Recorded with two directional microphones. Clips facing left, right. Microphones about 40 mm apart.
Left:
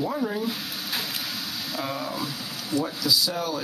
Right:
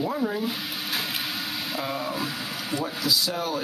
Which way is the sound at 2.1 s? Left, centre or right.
Right.